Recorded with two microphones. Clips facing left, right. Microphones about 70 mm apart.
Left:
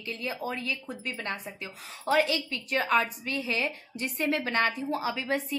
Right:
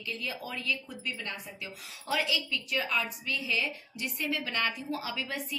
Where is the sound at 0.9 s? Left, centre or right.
Left.